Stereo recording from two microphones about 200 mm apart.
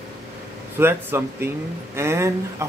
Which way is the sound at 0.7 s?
10° right (ahead or behind).